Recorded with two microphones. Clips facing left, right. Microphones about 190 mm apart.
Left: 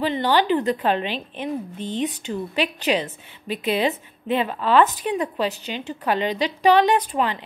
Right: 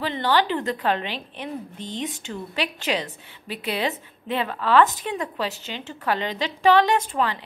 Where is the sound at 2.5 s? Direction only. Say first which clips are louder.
Left 4 dB; 20° left (ahead or behind).